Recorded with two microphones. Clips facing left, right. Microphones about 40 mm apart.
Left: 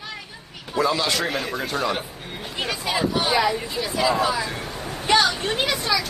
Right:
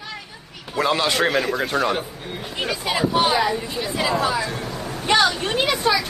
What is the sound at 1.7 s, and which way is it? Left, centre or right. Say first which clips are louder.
Speech: right 3 dB; right.